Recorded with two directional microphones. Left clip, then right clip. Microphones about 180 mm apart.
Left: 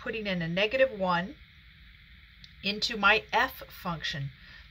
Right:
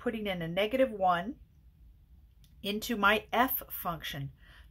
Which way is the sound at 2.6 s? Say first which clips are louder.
Left 3 dB; 55° right (ahead or behind).